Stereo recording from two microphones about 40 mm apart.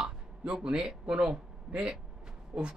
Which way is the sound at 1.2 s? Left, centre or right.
Right.